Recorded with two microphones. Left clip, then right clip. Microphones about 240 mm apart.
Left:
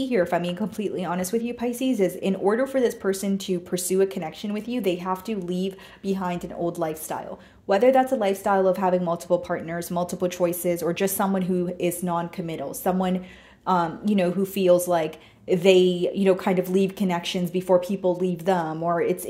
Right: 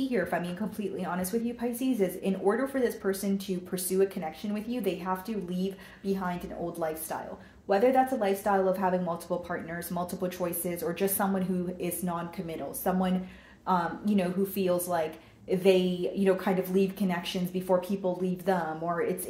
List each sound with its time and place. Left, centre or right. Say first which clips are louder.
0.1 s a woman's voice: left 7 dB; left